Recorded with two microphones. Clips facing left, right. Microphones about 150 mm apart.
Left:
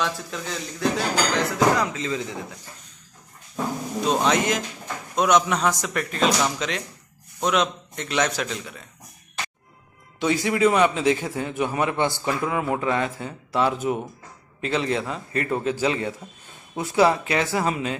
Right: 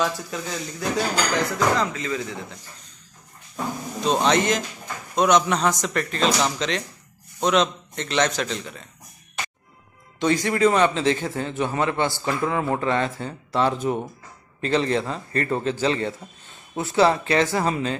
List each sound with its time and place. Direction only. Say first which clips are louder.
0.0 s speech: right 2 dB; 5° right (ahead or behind)
1.8 s speech: even; 20° left (ahead or behind)
4.0 s speech: right 1 dB; 5° left (ahead or behind)
10.1 s a man's voice: right 1 dB; 5° left (ahead or behind)